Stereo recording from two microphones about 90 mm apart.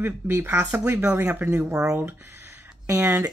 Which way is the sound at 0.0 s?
30° right (ahead or behind).